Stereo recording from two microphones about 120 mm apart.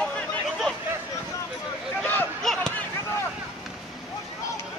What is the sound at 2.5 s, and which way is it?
Basketball bounce, 5° left (ahead or behind).